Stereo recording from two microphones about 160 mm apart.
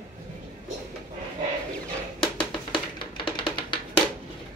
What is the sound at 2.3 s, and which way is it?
Music, 30° left (ahead or behind).